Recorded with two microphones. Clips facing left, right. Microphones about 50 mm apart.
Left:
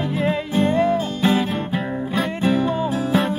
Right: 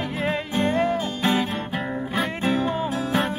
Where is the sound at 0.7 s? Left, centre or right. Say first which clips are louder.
Left 3 dB; right.